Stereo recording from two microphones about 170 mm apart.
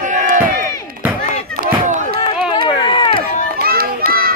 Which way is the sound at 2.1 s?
30° left (ahead or behind).